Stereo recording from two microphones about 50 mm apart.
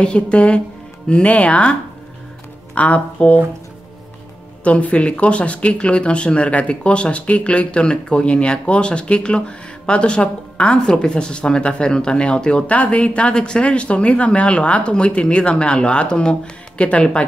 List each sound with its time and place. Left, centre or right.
0.0 s speech: left
4.6 s speech: left